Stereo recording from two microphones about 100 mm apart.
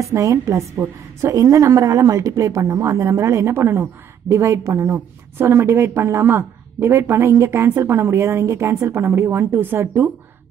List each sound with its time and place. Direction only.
0.0 s a woman's voice: 30° right (ahead or behind)